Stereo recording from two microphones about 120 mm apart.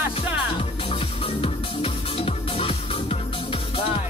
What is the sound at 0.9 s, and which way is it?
Music, 50° left (ahead or behind).